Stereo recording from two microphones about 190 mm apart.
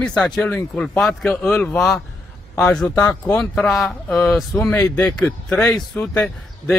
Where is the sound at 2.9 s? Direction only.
15° left (ahead or behind).